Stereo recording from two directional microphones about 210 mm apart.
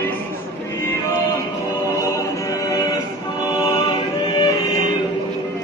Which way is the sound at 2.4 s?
15° left (ahead or behind).